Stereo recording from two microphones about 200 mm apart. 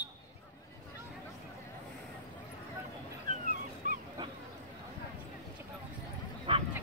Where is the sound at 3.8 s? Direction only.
40° right (ahead or behind).